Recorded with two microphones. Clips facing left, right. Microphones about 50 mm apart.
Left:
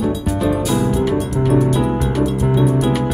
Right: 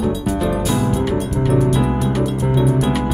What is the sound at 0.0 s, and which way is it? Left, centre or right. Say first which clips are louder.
Music: left 1 dB; centre.